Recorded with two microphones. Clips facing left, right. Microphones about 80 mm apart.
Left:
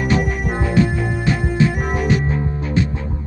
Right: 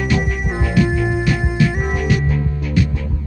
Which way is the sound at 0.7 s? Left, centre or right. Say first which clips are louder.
Right 2 dB; left.